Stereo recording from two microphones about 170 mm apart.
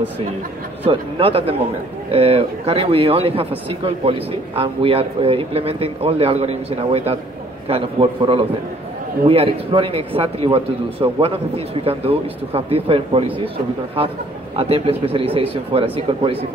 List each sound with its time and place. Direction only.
0.8 s speech: 30° right (ahead or behind)